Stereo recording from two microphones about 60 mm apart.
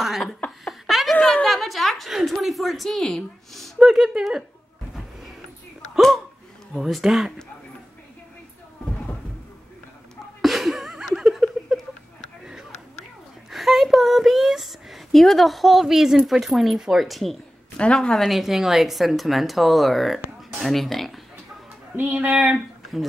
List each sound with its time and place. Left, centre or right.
0.0 s laughter: centre
0.7 s a sound: centre
3.8 s speech: centre
5.9 s hiccup: centre
6.7 s speech: centre
10.4 s laughter: centre
13.5 s speech: centre
21.9 s speech: right